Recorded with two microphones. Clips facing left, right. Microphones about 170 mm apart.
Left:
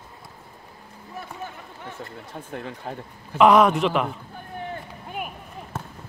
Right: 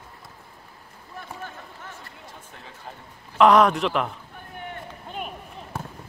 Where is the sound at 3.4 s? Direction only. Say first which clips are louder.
Left 1 dB; centre (ahead or behind).